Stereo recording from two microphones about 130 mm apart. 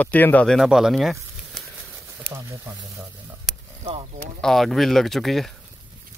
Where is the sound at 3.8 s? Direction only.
45° right (ahead or behind).